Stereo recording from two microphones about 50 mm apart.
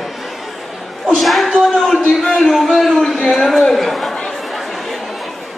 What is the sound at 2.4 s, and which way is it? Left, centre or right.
A man's voice, centre.